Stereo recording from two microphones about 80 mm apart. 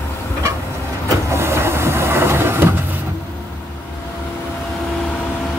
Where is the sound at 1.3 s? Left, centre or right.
Right.